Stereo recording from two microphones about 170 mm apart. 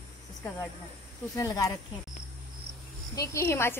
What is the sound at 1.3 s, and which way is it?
Speech, 20° left (ahead or behind).